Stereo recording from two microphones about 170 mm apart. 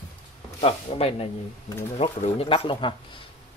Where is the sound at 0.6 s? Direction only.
35° left (ahead or behind).